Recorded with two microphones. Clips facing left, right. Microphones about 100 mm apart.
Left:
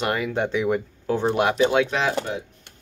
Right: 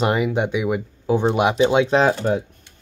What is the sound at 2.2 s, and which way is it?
Speech, 45° right (ahead or behind).